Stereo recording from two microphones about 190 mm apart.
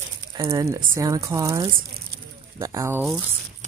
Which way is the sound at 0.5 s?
15° right (ahead or behind).